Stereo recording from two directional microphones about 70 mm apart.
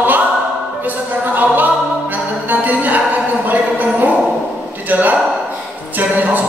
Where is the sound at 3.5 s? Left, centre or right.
Right.